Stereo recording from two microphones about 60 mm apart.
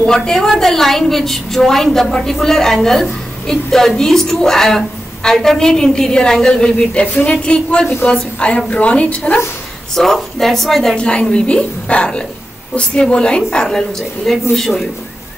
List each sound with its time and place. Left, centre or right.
0.0 s a woman's voice: centre
9.9 s a woman's voice: centre